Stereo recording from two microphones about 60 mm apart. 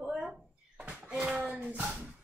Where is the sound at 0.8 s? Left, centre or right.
Centre.